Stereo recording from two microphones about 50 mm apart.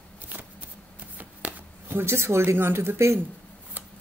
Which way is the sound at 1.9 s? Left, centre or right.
Right.